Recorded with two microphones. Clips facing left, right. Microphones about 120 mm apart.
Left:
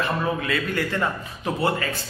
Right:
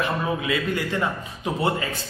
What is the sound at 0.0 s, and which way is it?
A man's voice, 15° right (ahead or behind).